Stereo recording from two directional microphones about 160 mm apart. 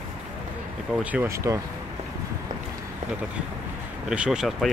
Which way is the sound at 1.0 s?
10° right (ahead or behind).